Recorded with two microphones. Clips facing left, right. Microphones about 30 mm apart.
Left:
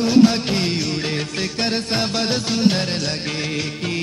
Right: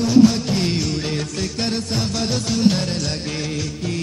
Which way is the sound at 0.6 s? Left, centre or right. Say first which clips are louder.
Even; centre.